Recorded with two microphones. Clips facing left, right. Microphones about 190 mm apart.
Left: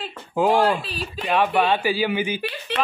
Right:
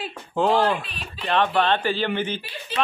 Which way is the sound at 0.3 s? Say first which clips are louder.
Left 2 dB; 10° left (ahead or behind).